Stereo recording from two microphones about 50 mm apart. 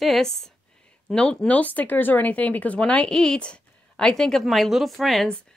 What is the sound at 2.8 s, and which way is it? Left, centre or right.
A woman's voice, centre.